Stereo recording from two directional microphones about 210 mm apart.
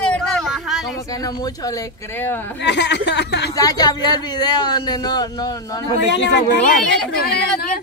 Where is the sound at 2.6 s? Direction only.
55° left (ahead or behind).